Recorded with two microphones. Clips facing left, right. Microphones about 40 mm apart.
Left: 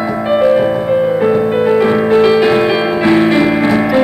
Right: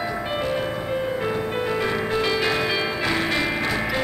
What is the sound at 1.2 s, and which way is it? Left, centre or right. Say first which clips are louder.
Music: left 13 dB; centre.